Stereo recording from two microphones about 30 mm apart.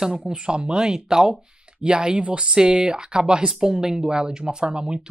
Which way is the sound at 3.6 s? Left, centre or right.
Centre.